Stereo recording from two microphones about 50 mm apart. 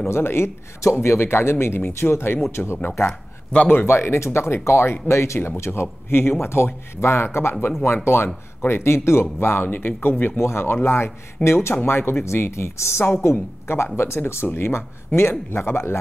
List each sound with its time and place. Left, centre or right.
0.1 s speech: left
3.5 s a man's voice: left
3.8 s speech: left
5.6 s speech: left